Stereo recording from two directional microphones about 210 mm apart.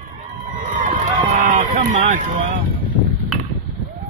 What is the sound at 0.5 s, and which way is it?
Run, 40° right (ahead or behind).